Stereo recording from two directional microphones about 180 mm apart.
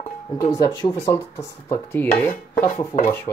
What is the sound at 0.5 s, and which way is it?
Dishes, 20° left (ahead or behind).